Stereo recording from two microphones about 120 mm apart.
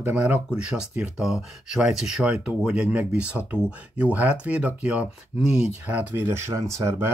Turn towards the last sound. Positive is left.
turn(degrees=-25)  # may be behind; listen again after turning